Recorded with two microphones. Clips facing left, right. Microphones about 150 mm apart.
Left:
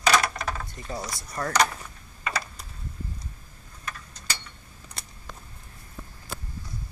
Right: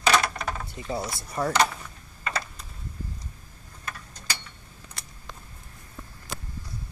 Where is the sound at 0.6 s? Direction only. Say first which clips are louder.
Right 3 dB; 20° right (ahead or behind).